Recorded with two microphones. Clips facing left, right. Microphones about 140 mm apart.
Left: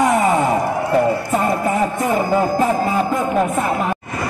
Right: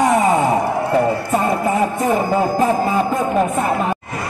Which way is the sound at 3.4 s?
Centre (ahead or behind).